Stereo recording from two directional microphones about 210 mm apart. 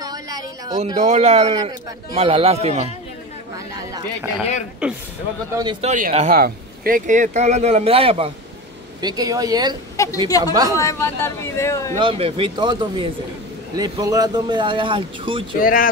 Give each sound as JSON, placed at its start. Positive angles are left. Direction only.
{"t": 0.0, "sound": "a sound", "side_deg": -15}
{"t": 0.9, "sound": "speech", "side_deg": -35}
{"t": 3.5, "sound": "chatter", "side_deg": -15}
{"t": 4.8, "sound": "a man's voice", "side_deg": -5}
{"t": 5.5, "sound": "speech", "side_deg": -20}
{"t": 5.9, "sound": "speech", "side_deg": -35}
{"t": 9.9, "sound": "speech", "side_deg": 15}
{"t": 12.0, "sound": "speech", "side_deg": -25}
{"t": 15.6, "sound": "speech", "side_deg": 40}